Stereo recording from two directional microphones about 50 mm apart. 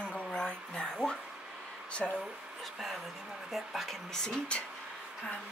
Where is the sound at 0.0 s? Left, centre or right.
Left.